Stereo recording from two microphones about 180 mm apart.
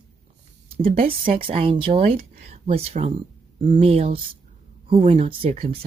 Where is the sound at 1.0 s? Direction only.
30° right (ahead or behind).